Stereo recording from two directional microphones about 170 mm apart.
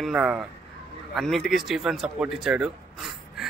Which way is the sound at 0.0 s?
5° right (ahead or behind).